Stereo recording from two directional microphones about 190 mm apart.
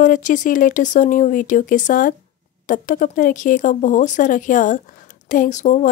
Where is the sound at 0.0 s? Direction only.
40° left (ahead or behind).